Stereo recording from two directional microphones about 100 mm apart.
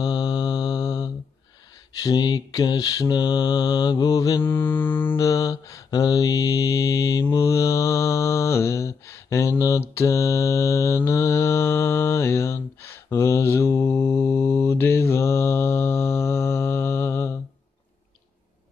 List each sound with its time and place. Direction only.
0.0 s mantra: 45° left (ahead or behind)
4.4 s mantra: 20° left (ahead or behind)
5.2 s mantra: 40° left (ahead or behind)